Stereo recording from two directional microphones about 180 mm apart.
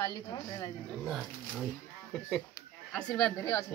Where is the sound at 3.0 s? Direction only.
5° left (ahead or behind).